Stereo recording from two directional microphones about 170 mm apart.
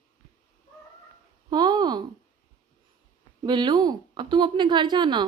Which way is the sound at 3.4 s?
25° right (ahead or behind).